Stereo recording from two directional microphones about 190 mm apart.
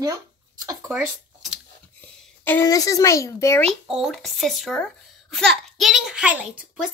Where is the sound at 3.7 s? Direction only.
5° right (ahead or behind).